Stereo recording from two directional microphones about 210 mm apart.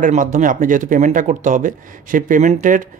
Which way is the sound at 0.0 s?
40° right (ahead or behind).